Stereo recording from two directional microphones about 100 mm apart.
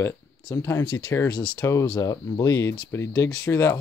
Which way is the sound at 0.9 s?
50° left (ahead or behind).